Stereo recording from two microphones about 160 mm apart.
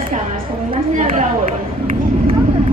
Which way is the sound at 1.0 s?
55° right (ahead or behind).